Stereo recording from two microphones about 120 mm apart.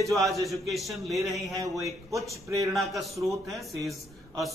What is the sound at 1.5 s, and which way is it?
Mantra, 30° right (ahead or behind).